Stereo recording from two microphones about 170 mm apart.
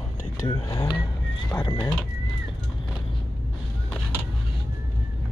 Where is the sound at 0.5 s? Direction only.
25° left (ahead or behind).